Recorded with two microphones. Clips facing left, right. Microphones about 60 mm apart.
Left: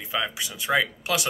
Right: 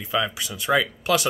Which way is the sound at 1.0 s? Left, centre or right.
Centre.